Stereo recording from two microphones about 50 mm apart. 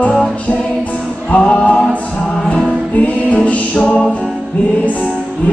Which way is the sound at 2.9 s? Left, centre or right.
Left.